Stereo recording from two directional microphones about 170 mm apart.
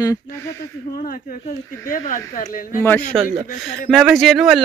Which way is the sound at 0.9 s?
55° left (ahead or behind).